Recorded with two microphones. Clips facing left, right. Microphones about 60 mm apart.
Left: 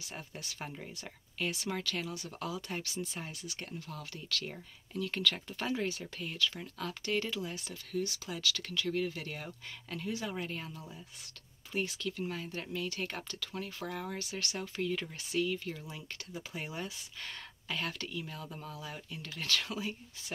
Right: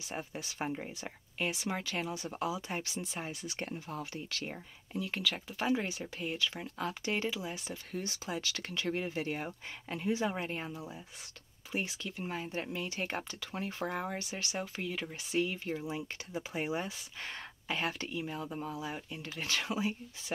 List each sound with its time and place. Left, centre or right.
0.1 s speech: centre
15.3 s speech: right